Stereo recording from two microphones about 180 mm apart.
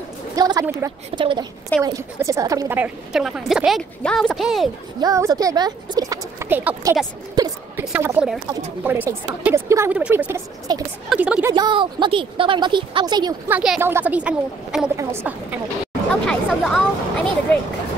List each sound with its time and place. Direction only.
0.4 s speech: 20° right (ahead or behind); by 4.6 s centre (ahead or behind)
5.0 s speech: 20° right (ahead or behind)
7.3 s a sound: 20° right (ahead or behind)
7.8 s a woman's voice: 10° right (ahead or behind)
11.5 s speech: 25° right (ahead or behind)
13.5 s a woman's voice: 10° right (ahead or behind)
16.3 s speech: centre (ahead or behind)